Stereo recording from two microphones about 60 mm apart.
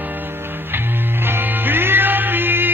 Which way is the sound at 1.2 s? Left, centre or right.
Right.